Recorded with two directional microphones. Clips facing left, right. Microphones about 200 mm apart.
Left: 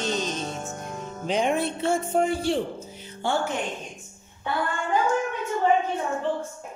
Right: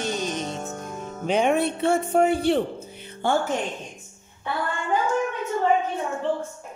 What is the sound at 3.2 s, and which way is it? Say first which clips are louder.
Speech: right 3 dB; 50° right (ahead or behind).